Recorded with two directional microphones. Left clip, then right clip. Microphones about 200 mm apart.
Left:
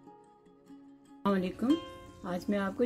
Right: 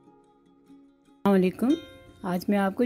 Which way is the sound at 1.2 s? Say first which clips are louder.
Right 7 dB; 40° right (ahead or behind).